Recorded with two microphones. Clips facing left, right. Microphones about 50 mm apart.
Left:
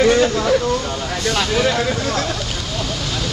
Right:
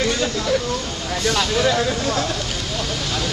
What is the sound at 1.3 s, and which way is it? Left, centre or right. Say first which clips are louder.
Speech: left 1 dB; centre.